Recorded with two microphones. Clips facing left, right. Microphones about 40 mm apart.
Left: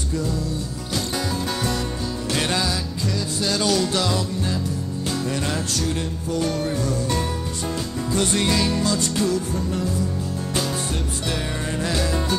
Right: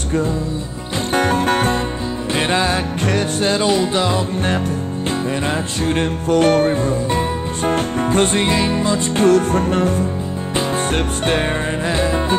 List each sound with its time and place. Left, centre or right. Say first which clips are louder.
1.1 s music: right 14 dB; right
5.5 s music: right 5 dB; right
6.7 s speech: right 6 dB; right
7.6 s music: right 11 dB; right
9.1 s music: right 9 dB; right
11.9 s music: right 6 dB; right